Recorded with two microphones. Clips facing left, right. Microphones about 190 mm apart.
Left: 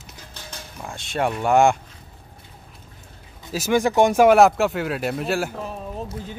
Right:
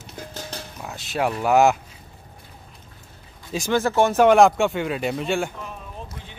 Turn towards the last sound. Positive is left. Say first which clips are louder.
# left 7 dB
turn(degrees=35)  # may be behind; listen again after turning